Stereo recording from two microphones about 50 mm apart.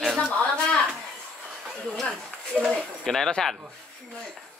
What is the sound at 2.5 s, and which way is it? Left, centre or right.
Speech, centre.